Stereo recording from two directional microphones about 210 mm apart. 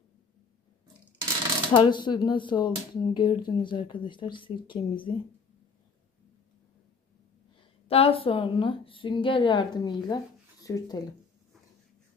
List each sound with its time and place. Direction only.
1.7 s speech: 20° left (ahead or behind)
7.9 s speech: 25° left (ahead or behind)